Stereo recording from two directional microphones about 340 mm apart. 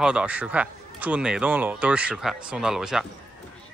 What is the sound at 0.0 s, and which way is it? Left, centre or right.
Speech, centre.